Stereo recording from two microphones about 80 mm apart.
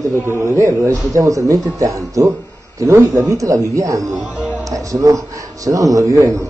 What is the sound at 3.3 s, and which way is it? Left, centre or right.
A man's voice, right.